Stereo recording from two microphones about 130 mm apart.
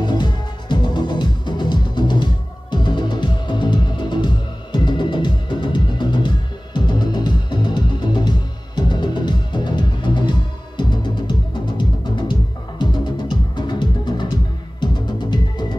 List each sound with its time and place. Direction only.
0.0 s music: 35° left (ahead or behind)